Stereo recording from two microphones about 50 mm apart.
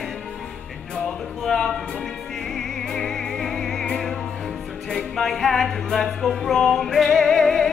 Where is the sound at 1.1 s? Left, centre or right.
Centre.